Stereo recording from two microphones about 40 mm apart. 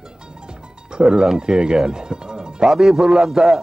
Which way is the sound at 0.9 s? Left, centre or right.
Right.